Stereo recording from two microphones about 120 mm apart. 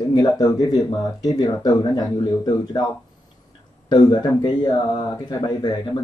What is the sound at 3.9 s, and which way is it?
Speech, 35° left (ahead or behind).